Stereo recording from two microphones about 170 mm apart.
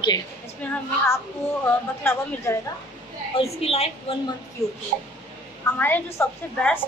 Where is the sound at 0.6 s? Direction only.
15° left (ahead or behind).